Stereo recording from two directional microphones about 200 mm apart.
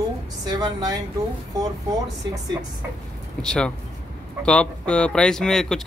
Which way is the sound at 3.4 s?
5° left (ahead or behind).